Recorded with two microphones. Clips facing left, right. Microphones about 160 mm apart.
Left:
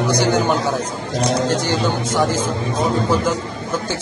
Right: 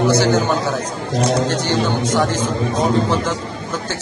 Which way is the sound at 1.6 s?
10° left (ahead or behind).